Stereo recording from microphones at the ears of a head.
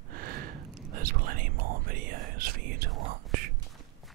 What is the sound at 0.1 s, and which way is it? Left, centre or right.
Whispering, right.